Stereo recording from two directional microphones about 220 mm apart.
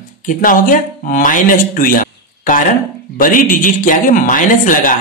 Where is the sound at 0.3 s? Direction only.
40° left (ahead or behind).